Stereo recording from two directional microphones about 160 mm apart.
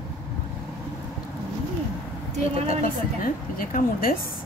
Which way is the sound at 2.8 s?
60° left (ahead or behind).